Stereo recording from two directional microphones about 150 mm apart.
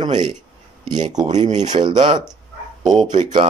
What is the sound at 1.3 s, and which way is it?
Speech, 50° right (ahead or behind).